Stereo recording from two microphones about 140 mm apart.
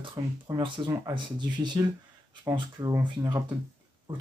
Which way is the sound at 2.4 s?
30° right (ahead or behind).